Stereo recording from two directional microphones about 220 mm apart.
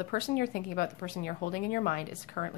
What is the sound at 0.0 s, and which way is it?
Speech, 40° left (ahead or behind).